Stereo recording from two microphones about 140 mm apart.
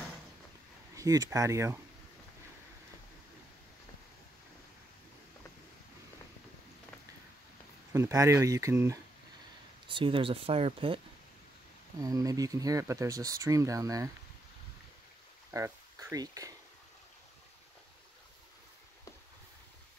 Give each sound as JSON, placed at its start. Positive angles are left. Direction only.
{"t": 0.9, "sound": "speech", "side_deg": -25}
{"t": 7.9, "sound": "speech", "side_deg": -20}
{"t": 9.8, "sound": "speech", "side_deg": -40}
{"t": 12.0, "sound": "speech", "side_deg": -25}
{"t": 15.5, "sound": "speech", "side_deg": -20}